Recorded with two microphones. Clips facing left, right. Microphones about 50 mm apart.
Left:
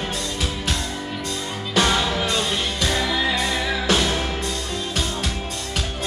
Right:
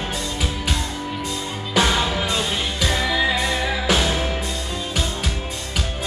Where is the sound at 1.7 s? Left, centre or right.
Centre.